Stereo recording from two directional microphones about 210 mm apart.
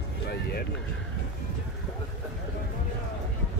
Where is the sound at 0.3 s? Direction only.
45° left (ahead or behind).